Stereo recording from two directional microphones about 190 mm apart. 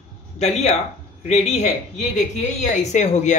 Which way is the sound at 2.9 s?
40° left (ahead or behind).